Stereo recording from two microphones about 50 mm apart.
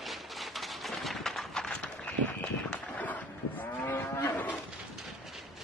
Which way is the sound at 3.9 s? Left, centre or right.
Left.